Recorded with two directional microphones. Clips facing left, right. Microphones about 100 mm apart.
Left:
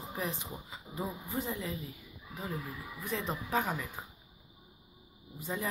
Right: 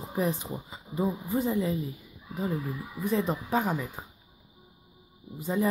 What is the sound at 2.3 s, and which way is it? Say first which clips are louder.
Speech: right 8 dB; 35° right (ahead or behind).